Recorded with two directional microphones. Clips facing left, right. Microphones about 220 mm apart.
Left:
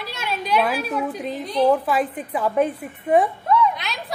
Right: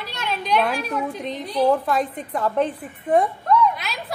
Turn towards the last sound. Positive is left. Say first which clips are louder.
# even
turn(degrees=0)  # may be behind; listen again after turning